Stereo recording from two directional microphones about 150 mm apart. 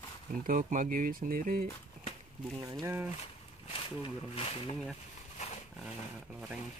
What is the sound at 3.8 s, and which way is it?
Speech, 40° left (ahead or behind).